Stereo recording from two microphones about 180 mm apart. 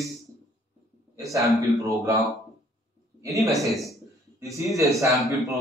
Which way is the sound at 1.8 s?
20° right (ahead or behind).